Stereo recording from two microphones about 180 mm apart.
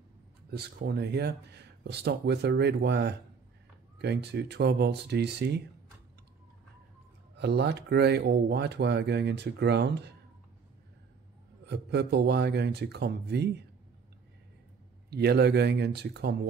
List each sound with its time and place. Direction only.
0.5 s speech: 60° right (ahead or behind)
7.3 s speech: 70° right (ahead or behind)
11.6 s speech: 70° right (ahead or behind)
15.0 s speech: 65° right (ahead or behind)